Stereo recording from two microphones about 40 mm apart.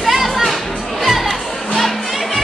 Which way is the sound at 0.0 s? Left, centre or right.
Centre.